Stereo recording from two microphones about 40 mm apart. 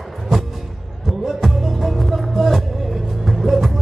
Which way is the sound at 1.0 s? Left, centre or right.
Centre.